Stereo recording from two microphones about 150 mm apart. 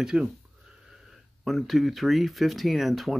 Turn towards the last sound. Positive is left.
turn(degrees=0)  # may be behind; listen again after turning